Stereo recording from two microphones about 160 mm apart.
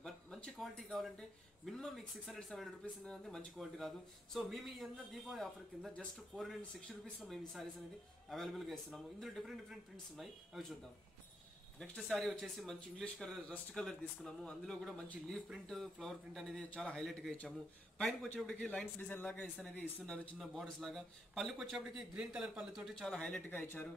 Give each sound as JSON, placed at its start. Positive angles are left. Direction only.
{"t": 0.0, "sound": "a sound", "side_deg": 0}
{"t": 1.7, "sound": "speech", "side_deg": 5}
{"t": 11.8, "sound": "speech", "side_deg": 5}